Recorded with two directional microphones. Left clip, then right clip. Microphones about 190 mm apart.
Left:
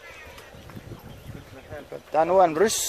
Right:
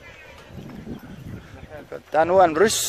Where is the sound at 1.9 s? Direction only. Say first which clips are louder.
Right 3 dB; 35° right (ahead or behind).